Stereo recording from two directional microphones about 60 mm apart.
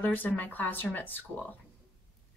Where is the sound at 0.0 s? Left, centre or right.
Left.